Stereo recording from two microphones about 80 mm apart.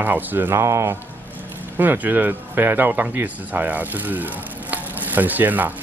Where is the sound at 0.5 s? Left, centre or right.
Right.